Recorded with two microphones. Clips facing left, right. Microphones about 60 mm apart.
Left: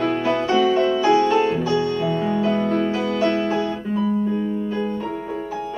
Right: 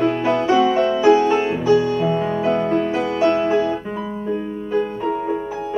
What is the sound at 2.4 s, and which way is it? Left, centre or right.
Music, right.